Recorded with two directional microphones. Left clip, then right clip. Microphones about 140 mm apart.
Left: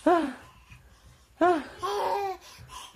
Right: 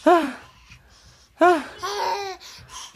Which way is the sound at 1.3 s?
30° right (ahead or behind).